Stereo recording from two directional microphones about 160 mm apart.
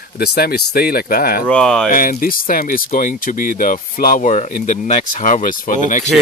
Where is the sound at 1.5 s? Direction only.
5° left (ahead or behind).